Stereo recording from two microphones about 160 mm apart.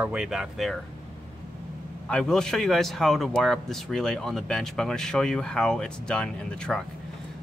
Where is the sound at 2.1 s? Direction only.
5° left (ahead or behind).